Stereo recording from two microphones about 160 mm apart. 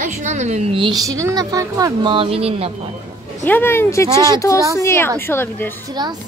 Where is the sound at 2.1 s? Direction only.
35° right (ahead or behind).